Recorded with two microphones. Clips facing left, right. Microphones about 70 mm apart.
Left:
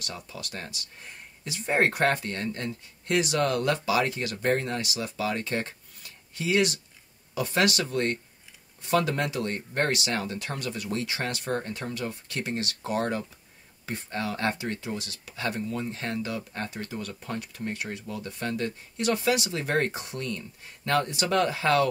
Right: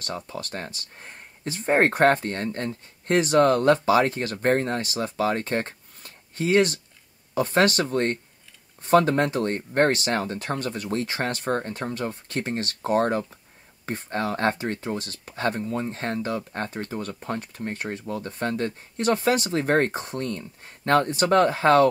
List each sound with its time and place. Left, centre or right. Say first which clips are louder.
0.0 s speech: right 6 dB; right